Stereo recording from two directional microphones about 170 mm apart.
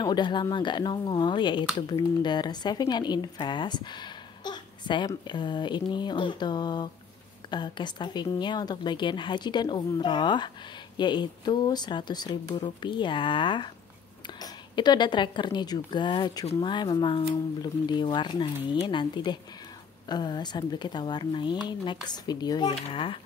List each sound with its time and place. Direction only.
0.0 s a child's voice: 25° left (ahead or behind)